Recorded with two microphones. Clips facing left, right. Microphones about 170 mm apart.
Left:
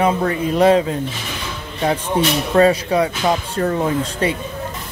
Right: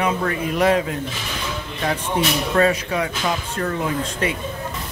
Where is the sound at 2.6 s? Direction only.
30° left (ahead or behind).